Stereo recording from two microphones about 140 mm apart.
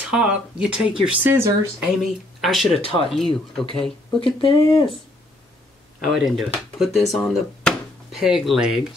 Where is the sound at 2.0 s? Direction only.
Centre (ahead or behind).